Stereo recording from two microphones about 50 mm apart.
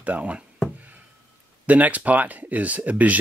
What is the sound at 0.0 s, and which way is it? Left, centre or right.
Speech, right.